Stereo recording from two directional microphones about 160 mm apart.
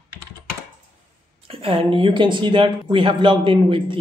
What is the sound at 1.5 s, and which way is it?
Speech, 35° right (ahead or behind).